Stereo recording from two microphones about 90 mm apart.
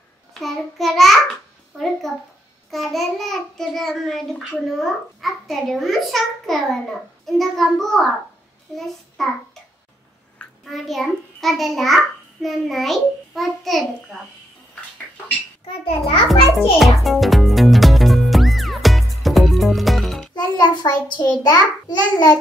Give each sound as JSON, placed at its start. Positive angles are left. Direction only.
{"t": 0.3, "sound": "a child's voice", "side_deg": 0}
{"t": 10.6, "sound": "a child's voice", "side_deg": 0}
{"t": 15.6, "sound": "a child's voice", "side_deg": 90}
{"t": 16.3, "sound": "music", "side_deg": 0}
{"t": 20.3, "sound": "a child's voice", "side_deg": 50}